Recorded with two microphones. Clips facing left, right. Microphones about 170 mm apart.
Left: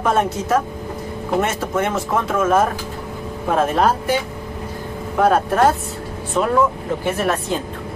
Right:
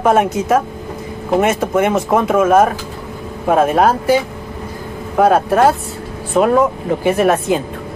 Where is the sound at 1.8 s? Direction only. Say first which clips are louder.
Right 5 dB; 15° right (ahead or behind).